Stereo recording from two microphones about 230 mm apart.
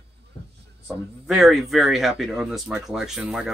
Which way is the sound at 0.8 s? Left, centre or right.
Centre.